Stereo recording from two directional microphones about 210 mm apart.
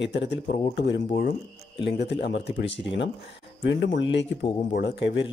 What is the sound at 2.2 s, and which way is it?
A man's voice, 55° left (ahead or behind).